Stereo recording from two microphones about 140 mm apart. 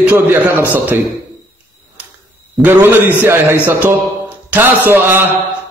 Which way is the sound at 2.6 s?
15° right (ahead or behind).